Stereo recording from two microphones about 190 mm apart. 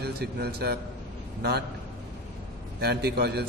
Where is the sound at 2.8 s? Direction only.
55° right (ahead or behind).